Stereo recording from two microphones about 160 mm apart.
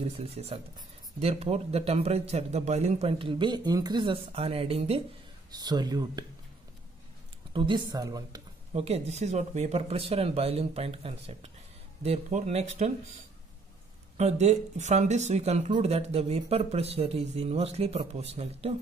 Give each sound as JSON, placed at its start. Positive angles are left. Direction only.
{"t": 0.0, "sound": "speech", "side_deg": -40}
{"t": 5.5, "sound": "speech", "side_deg": -25}
{"t": 7.5, "sound": "speech", "side_deg": -30}
{"t": 8.7, "sound": "speech", "side_deg": -40}
{"t": 14.1, "sound": "speech", "side_deg": -45}